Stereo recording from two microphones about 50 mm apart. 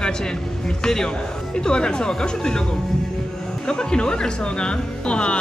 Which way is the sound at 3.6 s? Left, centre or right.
Centre.